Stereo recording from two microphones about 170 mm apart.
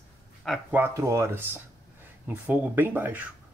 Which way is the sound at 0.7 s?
15° right (ahead or behind).